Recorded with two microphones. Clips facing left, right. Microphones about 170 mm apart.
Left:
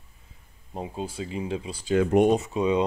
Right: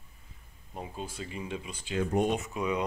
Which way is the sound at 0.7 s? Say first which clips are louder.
Left 6 dB; 30° left (ahead or behind).